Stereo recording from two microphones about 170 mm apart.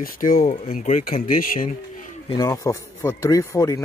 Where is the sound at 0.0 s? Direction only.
55° left (ahead or behind).